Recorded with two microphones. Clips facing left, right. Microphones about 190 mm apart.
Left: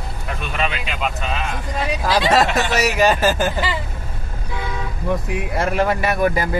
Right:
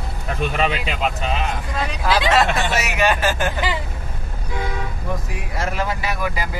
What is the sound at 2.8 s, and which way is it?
Speech, 40° left (ahead or behind).